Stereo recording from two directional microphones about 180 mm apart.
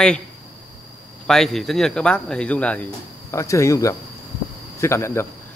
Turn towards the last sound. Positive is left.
turn(degrees=15)  # may be behind; listen again after turning